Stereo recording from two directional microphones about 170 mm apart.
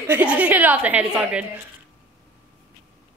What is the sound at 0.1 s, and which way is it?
A woman's voice, 10° right (ahead or behind).